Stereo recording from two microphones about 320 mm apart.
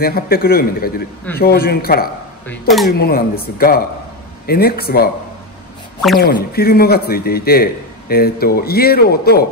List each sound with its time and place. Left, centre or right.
0.0 s a man's voice: left
6.1 s a man's voice: left